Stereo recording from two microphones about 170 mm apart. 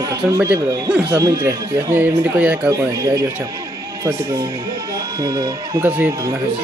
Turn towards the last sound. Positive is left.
turn(degrees=-10)  # may be behind; listen again after turning